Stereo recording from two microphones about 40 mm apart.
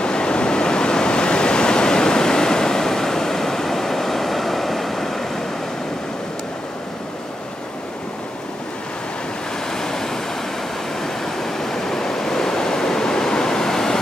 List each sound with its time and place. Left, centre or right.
0.0 s waves: left
9.7 s vehicle: centre
11.0 s waves: centre